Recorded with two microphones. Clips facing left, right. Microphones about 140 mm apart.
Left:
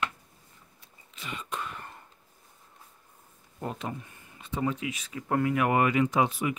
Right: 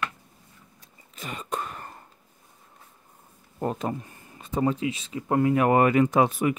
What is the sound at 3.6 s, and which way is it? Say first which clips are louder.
Speech: right 7 dB; 40° right (ahead or behind).